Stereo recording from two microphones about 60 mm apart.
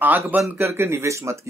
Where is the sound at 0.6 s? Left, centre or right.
Right.